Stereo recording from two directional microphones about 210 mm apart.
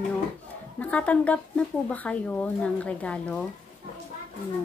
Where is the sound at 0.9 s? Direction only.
5° left (ahead or behind).